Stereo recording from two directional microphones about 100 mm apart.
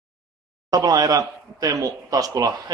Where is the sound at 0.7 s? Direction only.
40° right (ahead or behind).